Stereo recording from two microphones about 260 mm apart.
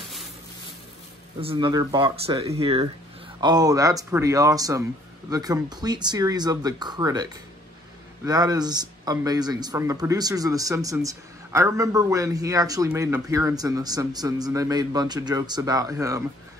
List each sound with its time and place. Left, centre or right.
1.4 s a man's voice: centre
8.3 s a man's voice: centre